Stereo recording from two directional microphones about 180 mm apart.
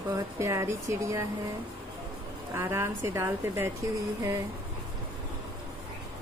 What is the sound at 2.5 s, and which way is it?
A woman's voice, 15° right (ahead or behind).